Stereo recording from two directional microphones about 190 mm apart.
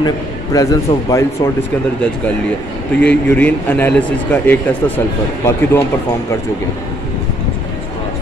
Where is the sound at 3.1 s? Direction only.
10° left (ahead or behind).